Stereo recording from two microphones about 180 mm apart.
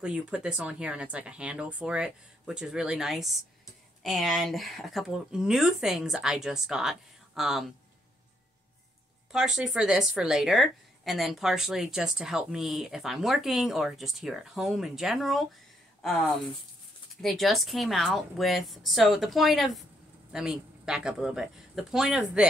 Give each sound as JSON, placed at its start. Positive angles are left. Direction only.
{"t": 0.0, "sound": "a woman's voice", "side_deg": -5}
{"t": 9.3, "sound": "a woman's voice", "side_deg": -5}